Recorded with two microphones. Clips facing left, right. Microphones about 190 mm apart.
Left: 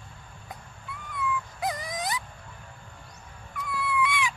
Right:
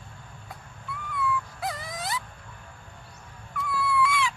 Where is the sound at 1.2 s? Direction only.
15° left (ahead or behind).